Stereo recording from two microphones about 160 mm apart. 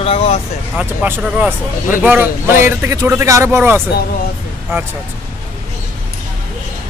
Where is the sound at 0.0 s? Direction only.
40° left (ahead or behind).